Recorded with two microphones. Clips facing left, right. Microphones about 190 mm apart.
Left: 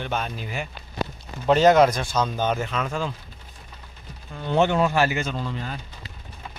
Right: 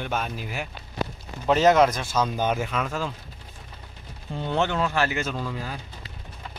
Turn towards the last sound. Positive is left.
turn(degrees=-5)  # may be behind; listen again after turning